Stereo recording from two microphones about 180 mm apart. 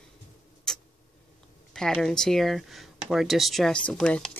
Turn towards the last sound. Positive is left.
turn(degrees=5)  # may be behind; listen again after turning